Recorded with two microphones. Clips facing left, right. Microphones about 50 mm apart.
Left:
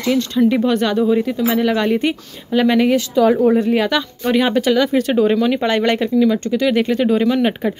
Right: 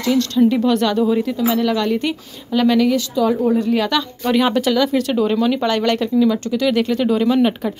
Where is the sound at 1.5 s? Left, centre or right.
Left.